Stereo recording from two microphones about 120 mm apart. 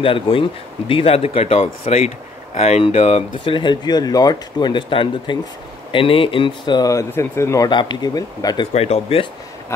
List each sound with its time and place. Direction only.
0.0 s speech: 50° left (ahead or behind)
3.4 s speech: 40° left (ahead or behind); by 7.7 s 25° left (ahead or behind)
7.7 s speech: 35° left (ahead or behind)
8.7 s speech: 60° left (ahead or behind)